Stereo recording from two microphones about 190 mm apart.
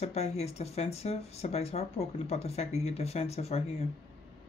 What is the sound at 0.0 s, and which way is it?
Speech, 35° left (ahead or behind).